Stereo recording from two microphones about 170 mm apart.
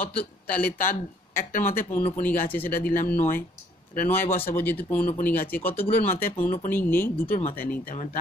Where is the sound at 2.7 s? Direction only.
55° left (ahead or behind).